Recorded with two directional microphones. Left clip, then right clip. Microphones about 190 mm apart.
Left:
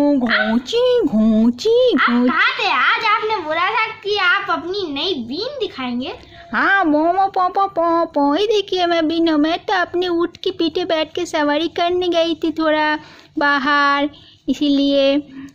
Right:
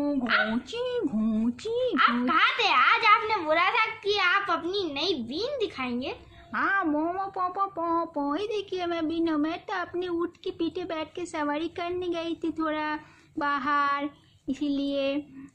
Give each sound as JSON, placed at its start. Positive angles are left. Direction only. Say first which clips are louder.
{"t": 0.7, "sound": "speech", "louder": "left 15 dB", "side_deg": 50}
{"t": 2.0, "sound": "a child's voice", "louder": "left 7 dB", "side_deg": -35}
{"t": 6.5, "sound": "speech", "louder": "left 11 dB", "side_deg": 55}